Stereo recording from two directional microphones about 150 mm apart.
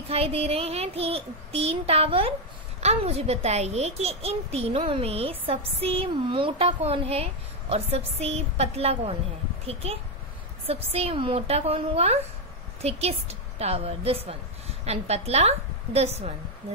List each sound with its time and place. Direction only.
0.1 s a child's voice: 40° right (ahead or behind)
10.7 s a child's voice: 40° right (ahead or behind)